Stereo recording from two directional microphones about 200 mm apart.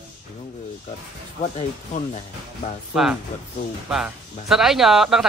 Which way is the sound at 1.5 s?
35° left (ahead or behind).